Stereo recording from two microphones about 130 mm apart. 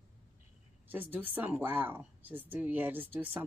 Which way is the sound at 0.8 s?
15° right (ahead or behind).